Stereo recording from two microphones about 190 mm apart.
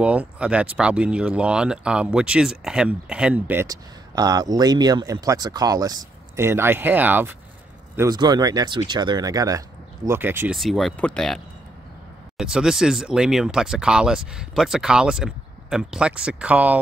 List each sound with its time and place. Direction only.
0.0 s speech: 5° right (ahead or behind)
10.6 s speech: centre (ahead or behind)